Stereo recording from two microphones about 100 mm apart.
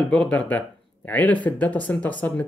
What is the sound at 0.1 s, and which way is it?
Speech, 10° left (ahead or behind).